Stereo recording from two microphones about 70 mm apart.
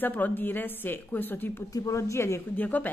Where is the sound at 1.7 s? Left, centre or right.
Left.